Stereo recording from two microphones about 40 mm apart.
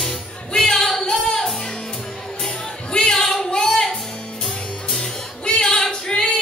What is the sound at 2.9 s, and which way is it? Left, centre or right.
Music, centre.